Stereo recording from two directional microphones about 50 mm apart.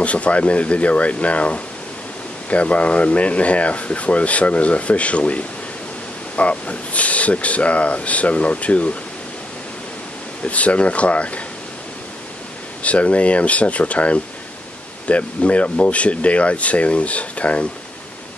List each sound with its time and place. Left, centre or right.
0.0 s speech: left
10.4 s speech: left
12.8 s speech: left